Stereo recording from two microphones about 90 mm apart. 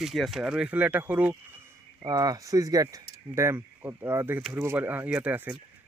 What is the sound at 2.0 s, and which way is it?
Speech, 45° right (ahead or behind).